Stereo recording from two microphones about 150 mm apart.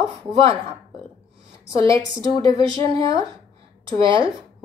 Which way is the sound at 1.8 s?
35° right (ahead or behind).